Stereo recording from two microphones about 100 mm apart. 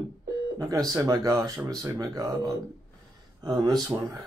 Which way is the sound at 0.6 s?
35° right (ahead or behind).